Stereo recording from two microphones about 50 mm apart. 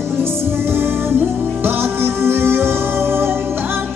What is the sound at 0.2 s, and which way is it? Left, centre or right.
Music, right.